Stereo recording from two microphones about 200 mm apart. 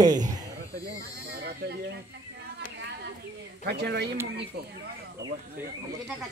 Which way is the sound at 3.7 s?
55° right (ahead or behind).